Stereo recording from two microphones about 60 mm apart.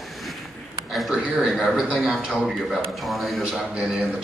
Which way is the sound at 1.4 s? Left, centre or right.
Centre.